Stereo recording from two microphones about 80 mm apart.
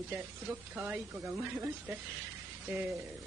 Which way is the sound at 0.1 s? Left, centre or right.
Right.